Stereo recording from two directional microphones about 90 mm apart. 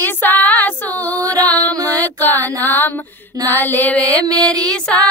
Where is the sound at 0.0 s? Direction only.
20° left (ahead or behind).